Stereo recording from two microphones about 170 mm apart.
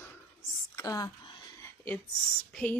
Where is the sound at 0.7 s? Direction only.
20° left (ahead or behind).